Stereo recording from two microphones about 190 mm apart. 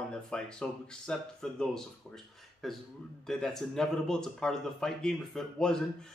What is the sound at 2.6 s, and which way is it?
Speech, centre (ahead or behind).